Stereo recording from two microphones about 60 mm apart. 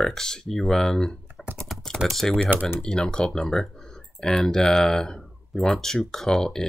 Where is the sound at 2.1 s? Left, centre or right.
Centre.